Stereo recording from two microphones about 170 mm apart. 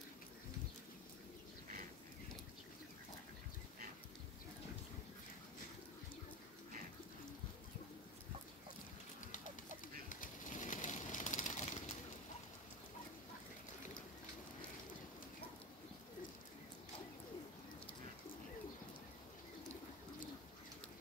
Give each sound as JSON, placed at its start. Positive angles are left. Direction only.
{"t": 10.0, "sound": "bird", "side_deg": 50}